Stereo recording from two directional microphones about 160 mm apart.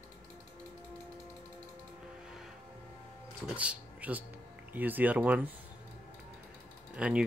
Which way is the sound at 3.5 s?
10° right (ahead or behind).